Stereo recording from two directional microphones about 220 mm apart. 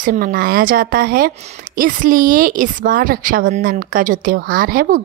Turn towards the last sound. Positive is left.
turn(degrees=-40)  # may be behind; listen again after turning